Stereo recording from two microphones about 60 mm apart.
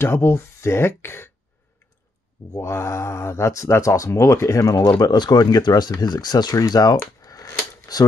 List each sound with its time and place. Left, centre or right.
0.0 s speech: left
2.5 s speech: left
7.2 s a sound: left
7.9 s speech: left